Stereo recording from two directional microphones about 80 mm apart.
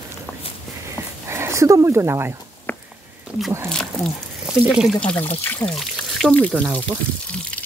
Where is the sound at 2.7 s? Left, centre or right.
Left.